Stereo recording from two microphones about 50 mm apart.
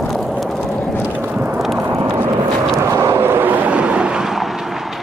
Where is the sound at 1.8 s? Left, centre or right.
Right.